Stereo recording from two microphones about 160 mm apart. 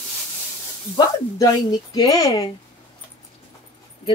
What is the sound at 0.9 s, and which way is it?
Speech, 25° left (ahead or behind).